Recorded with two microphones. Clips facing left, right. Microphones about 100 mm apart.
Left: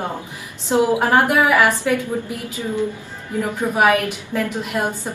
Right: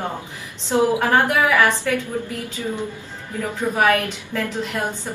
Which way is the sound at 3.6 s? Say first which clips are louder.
Left 1 dB; 15° left (ahead or behind).